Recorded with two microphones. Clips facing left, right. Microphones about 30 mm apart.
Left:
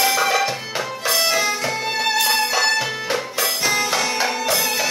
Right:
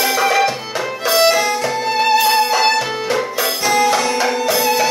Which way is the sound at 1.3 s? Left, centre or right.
Centre.